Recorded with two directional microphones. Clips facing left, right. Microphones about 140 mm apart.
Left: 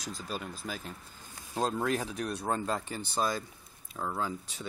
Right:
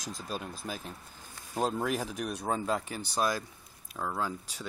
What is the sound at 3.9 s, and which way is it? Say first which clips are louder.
Speech: even; 5° left (ahead or behind).